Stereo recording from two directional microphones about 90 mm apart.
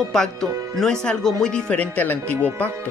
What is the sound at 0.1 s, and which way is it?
Speech, 5° left (ahead or behind).